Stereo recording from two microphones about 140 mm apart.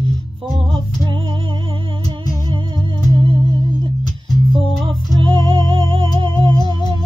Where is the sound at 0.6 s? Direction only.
40° right (ahead or behind).